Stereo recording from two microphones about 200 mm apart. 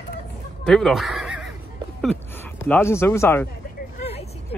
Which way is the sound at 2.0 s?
5° left (ahead or behind).